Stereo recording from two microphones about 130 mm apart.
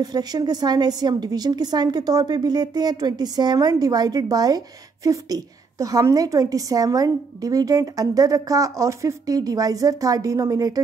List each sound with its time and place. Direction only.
0.0 s a woman's voice: 30° right (ahead or behind)